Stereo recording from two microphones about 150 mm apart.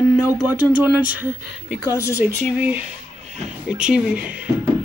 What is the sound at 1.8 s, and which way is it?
Speech, 20° left (ahead or behind).